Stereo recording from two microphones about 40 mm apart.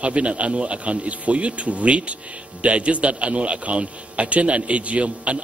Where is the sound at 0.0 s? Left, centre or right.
Right.